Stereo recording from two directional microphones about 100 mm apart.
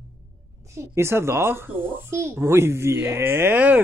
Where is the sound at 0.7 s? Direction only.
30° right (ahead or behind).